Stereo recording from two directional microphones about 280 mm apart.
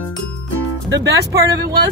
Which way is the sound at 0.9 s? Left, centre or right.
Right.